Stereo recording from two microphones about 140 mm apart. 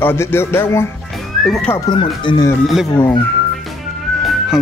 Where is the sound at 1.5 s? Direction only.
5° left (ahead or behind).